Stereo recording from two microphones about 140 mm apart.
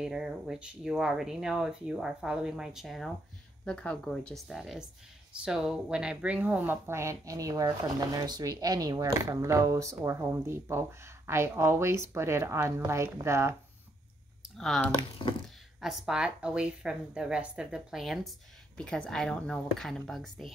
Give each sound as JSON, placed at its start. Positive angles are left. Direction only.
{"t": 0.0, "sound": "speech", "side_deg": -5}
{"t": 14.6, "sound": "speech", "side_deg": 0}
{"t": 15.0, "sound": "speech", "side_deg": 40}
{"t": 15.4, "sound": "speech", "side_deg": 0}